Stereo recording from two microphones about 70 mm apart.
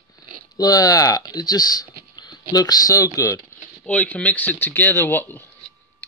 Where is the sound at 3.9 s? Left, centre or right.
Centre.